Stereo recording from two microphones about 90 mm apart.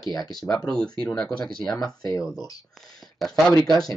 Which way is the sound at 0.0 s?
45° left (ahead or behind).